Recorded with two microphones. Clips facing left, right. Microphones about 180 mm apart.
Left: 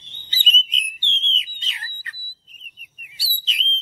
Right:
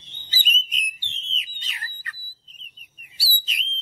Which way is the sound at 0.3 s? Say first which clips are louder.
Left 2 dB; 25° left (ahead or behind).